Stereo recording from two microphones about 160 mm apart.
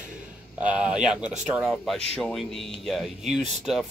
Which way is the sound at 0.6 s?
10° right (ahead or behind).